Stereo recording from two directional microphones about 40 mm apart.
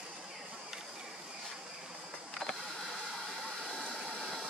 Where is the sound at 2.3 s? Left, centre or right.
Centre.